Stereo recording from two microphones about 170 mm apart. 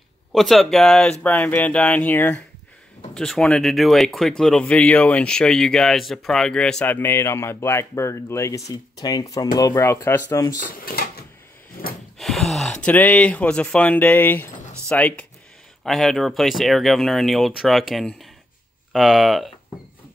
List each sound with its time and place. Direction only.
0.3 s speech: centre (ahead or behind)
11.8 s a sound: 60° left (ahead or behind)
12.2 s speech: centre (ahead or behind)